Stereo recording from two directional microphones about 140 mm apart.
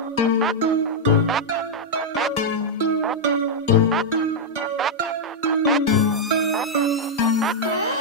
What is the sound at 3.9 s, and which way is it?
Music, centre (ahead or behind).